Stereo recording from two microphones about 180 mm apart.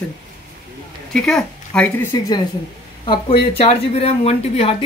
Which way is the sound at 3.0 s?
30° left (ahead or behind).